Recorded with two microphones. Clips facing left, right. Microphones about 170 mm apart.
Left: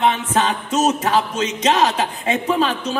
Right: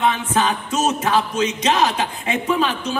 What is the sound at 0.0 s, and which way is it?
Speech, 35° left (ahead or behind).